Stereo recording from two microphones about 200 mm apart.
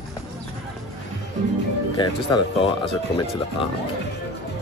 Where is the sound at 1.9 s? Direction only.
20° left (ahead or behind).